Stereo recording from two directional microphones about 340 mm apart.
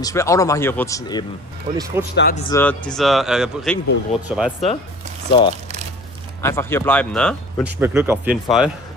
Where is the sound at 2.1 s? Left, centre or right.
Left.